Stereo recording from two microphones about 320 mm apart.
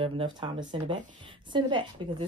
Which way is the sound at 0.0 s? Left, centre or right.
Centre.